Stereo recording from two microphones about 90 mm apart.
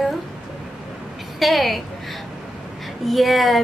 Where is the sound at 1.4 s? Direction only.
Centre (ahead or behind).